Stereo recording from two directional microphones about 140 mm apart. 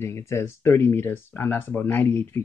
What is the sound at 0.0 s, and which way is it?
Speech, 20° left (ahead or behind).